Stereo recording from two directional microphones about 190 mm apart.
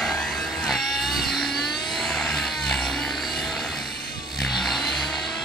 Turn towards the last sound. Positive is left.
turn(degrees=0)  # may be behind; listen again after turning